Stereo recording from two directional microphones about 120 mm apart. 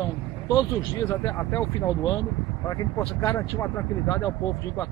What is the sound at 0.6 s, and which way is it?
Speech, 25° left (ahead or behind).